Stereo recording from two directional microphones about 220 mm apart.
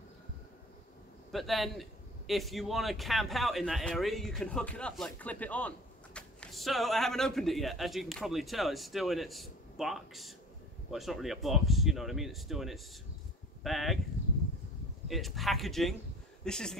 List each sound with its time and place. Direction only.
1.3 s a man's voice: centre (ahead or behind)
15.0 s a man's voice: centre (ahead or behind)